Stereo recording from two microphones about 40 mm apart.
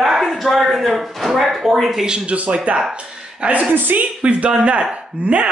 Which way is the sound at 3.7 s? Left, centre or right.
Right.